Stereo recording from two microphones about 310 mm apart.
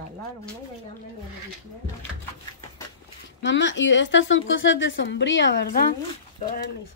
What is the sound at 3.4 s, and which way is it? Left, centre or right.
Speech, left.